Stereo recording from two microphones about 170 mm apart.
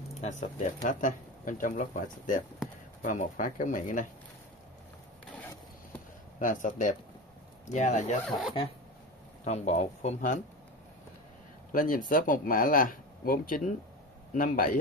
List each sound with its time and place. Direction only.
0.2 s speech: 45° left (ahead or behind)
6.4 s speech: 50° left (ahead or behind)
8.3 s speech: centre (ahead or behind)
9.4 s speech: 40° left (ahead or behind)
11.7 s speech: 55° left (ahead or behind)